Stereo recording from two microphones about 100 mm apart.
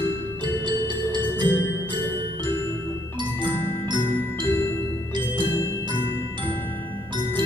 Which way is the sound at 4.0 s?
20° left (ahead or behind).